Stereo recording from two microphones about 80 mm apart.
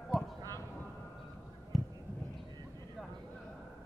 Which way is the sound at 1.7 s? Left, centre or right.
Centre.